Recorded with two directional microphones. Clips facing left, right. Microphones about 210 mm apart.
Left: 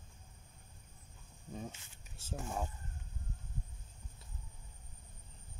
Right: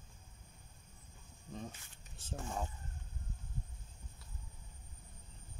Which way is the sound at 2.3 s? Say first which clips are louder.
Left 1 dB; 5° left (ahead or behind).